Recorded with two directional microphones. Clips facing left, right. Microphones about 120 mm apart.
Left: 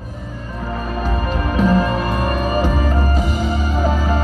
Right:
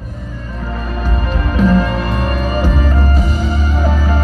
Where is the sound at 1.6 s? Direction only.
40° left (ahead or behind).